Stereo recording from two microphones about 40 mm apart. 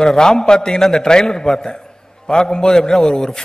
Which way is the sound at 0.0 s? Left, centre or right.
Centre.